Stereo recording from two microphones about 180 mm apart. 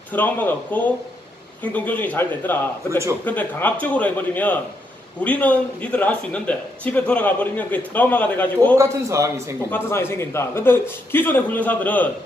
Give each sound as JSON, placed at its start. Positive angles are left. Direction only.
{"t": 0.1, "sound": "a man's voice", "side_deg": 10}
{"t": 8.7, "sound": "a man's voice", "side_deg": -15}
{"t": 9.7, "sound": "a man's voice", "side_deg": 15}